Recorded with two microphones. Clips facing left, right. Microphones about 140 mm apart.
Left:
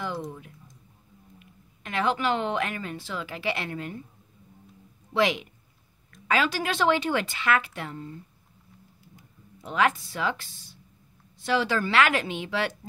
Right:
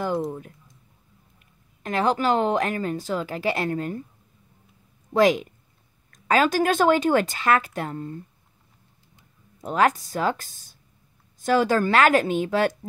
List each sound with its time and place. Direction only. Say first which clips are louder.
1.8 s a woman's voice: right 4 dB; 40° right (ahead or behind)
5.1 s a woman's voice: right 6 dB; 45° right (ahead or behind)
9.6 s a woman's voice: right 4 dB; 40° right (ahead or behind)